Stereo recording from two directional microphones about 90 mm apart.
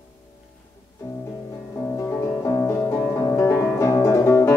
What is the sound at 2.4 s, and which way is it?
Music, 35° left (ahead or behind).